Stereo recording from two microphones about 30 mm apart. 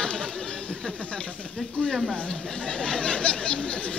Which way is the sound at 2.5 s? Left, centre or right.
Left.